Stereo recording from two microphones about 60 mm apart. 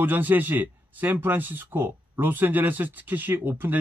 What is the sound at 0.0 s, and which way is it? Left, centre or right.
Speech, right.